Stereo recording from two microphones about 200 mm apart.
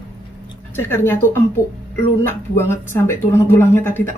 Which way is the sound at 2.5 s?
10° left (ahead or behind).